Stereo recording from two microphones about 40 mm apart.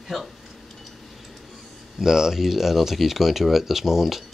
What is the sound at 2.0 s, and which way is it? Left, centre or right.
Speech, centre.